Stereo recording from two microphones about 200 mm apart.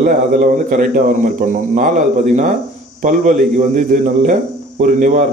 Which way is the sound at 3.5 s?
40° right (ahead or behind).